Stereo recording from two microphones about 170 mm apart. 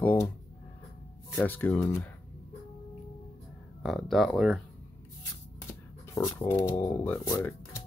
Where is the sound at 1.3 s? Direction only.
10° left (ahead or behind).